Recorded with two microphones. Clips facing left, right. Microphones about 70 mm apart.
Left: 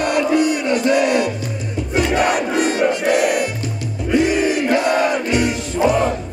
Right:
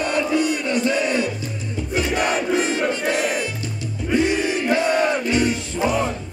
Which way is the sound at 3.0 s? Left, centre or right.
Left.